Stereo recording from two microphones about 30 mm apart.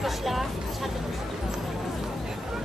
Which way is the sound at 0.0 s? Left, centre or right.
Centre.